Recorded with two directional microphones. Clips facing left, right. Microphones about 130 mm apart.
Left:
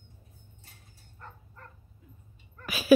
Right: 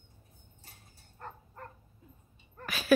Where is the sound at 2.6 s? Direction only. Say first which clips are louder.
Left 5 dB; 5° left (ahead or behind).